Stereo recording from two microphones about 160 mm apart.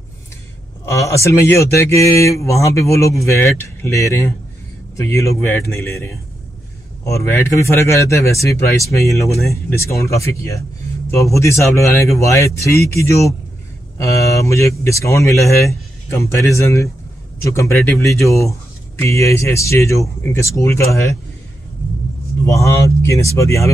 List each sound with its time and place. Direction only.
0.8 s speech: 20° left (ahead or behind)
22.4 s speech: 20° left (ahead or behind)